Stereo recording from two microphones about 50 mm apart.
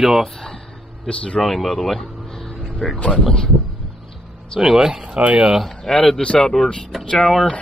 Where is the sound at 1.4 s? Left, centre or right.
Centre.